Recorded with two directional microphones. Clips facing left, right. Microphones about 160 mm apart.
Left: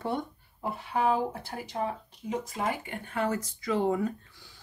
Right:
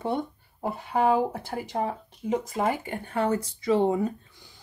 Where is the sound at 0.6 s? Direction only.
45° right (ahead or behind).